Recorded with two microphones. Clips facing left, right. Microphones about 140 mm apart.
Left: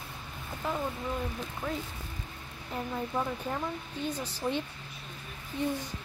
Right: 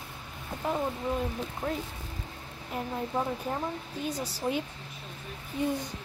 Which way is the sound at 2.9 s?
20° right (ahead or behind).